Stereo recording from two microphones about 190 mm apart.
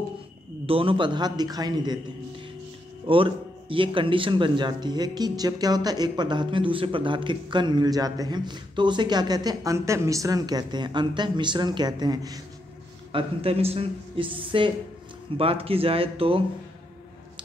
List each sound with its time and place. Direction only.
0.7 s speech: 30° right (ahead or behind)
3.1 s speech: 25° right (ahead or behind)
13.1 s speech: 30° right (ahead or behind)